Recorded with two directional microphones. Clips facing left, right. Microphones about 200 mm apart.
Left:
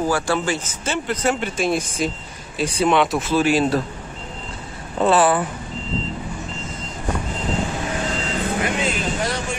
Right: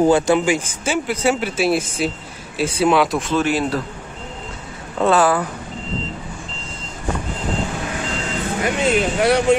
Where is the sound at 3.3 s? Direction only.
10° left (ahead or behind).